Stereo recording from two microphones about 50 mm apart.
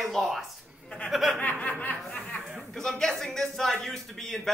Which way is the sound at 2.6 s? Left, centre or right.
Centre.